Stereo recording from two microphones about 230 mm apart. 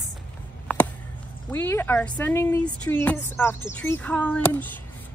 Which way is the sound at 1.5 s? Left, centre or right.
Centre.